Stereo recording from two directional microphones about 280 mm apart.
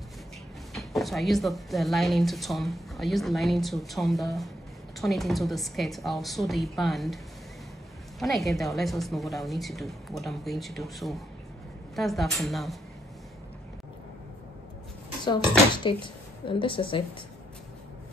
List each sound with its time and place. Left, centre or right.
0.7 s speech: centre
8.2 s speech: centre
15.8 s a woman's voice: centre